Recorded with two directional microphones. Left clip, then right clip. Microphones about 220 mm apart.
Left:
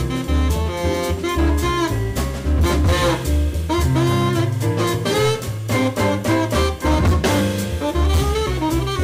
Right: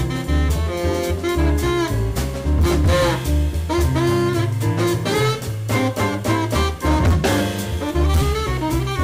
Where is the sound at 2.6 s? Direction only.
15° left (ahead or behind).